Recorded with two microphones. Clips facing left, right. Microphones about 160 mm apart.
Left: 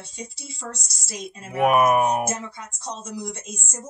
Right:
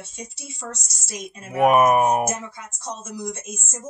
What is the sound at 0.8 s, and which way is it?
Speech, 5° right (ahead or behind).